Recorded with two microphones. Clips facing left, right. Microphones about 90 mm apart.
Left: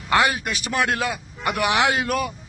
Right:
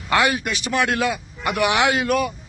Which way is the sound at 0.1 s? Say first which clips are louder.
Right 1 dB; 35° left (ahead or behind).